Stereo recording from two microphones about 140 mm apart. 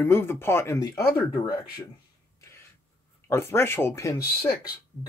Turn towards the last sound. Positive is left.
turn(degrees=20)  # may be behind; listen again after turning